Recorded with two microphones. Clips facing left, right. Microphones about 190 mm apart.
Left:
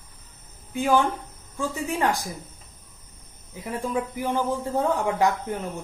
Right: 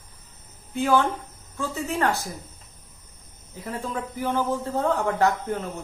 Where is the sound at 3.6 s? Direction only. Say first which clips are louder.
Left 3 dB; 15° left (ahead or behind).